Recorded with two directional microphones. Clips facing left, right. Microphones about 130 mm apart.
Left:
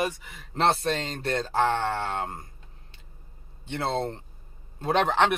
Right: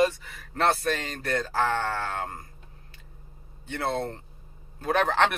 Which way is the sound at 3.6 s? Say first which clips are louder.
Left 1 dB; 25° left (ahead or behind).